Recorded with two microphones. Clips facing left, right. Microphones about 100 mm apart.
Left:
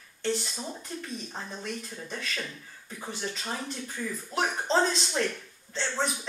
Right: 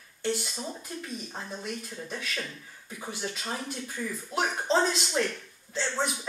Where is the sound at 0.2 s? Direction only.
10° right (ahead or behind).